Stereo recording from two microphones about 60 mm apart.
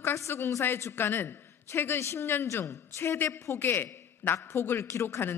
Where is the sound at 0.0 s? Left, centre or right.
Left.